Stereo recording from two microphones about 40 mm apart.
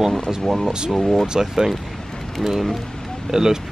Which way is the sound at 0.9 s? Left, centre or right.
Centre.